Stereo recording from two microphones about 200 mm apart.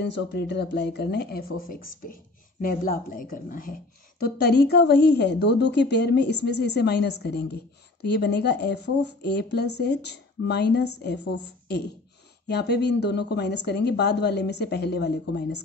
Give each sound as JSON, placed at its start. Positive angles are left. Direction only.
{"t": 0.0, "sound": "a woman's voice", "side_deg": 60}